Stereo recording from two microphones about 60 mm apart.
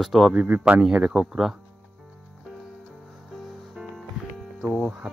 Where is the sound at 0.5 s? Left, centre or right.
Right.